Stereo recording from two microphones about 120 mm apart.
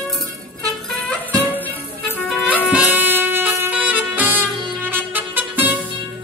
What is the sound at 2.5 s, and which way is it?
Music, 10° right (ahead or behind).